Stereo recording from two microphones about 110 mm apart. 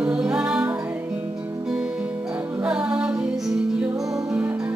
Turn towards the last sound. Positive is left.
turn(degrees=-15)  # may be behind; listen again after turning